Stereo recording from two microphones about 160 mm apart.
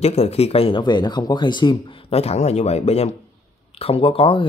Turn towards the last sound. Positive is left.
turn(degrees=35)  # may be behind; listen again after turning